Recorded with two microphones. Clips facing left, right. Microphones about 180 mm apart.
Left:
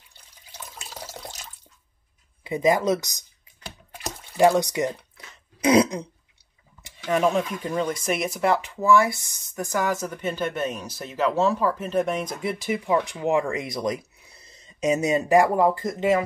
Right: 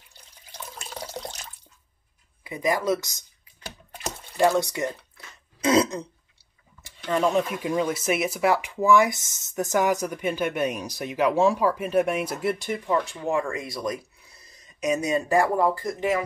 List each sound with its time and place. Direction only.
0.7 s water: 5° left (ahead or behind)
2.4 s speech: 25° left (ahead or behind)
4.6 s throat clearing: 20° left (ahead or behind)
6.8 s a sound: 10° left (ahead or behind)
7.5 s speech: 10° right (ahead or behind)
12.9 s speech: 15° left (ahead or behind)